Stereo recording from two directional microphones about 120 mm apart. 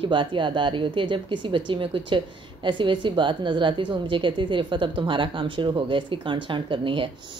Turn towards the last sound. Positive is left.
turn(degrees=-45)  # may be behind; listen again after turning